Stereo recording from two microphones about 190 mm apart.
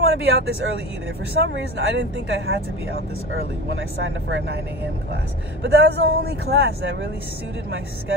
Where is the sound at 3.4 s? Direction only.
75° right (ahead or behind).